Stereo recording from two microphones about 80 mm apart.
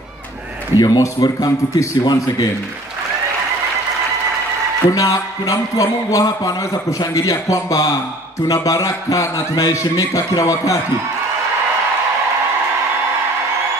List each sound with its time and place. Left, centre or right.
0.7 s a man's voice: left
4.9 s a man's voice: left